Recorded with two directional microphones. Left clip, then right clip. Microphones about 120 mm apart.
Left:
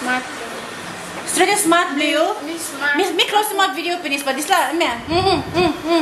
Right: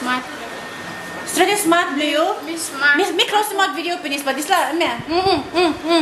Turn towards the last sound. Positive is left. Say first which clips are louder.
# even
turn(degrees=-10)  # may be behind; listen again after turning